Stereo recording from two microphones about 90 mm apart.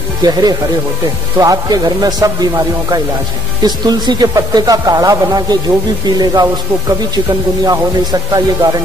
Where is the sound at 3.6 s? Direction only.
50° right (ahead or behind).